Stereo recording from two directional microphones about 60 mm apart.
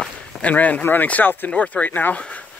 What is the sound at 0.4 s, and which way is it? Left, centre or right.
Speech, left.